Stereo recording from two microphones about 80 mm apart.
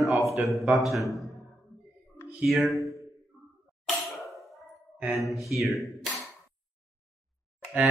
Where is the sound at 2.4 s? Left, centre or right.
Centre.